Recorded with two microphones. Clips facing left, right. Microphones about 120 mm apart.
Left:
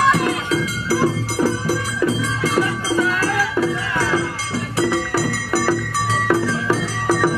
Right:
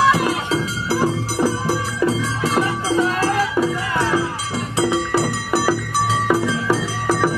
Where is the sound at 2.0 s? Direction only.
30° right (ahead or behind).